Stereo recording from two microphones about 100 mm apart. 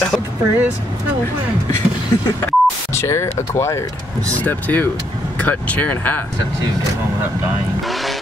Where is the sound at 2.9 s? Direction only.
30° left (ahead or behind).